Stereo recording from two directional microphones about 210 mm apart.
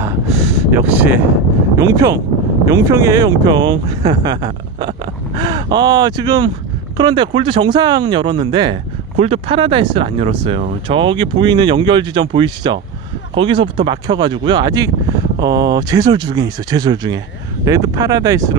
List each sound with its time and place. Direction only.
0.7 s speech: 10° right (ahead or behind)